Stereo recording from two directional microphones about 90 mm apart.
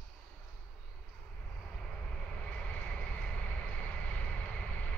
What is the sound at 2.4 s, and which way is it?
Vehicle, 15° left (ahead or behind).